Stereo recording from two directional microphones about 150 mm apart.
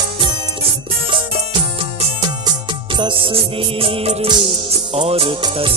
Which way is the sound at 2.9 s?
35° right (ahead or behind).